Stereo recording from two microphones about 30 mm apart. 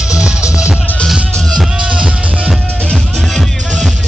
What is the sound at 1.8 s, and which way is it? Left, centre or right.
Music, right.